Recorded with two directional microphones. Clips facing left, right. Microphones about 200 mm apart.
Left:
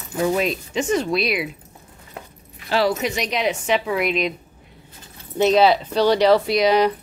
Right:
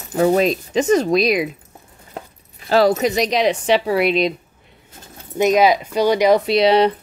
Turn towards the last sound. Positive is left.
turn(degrees=-30)  # may be behind; listen again after turning